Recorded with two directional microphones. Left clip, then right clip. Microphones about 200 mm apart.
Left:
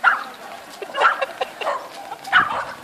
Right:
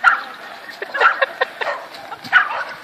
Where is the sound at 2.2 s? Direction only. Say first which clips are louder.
Right 2 dB; 30° right (ahead or behind).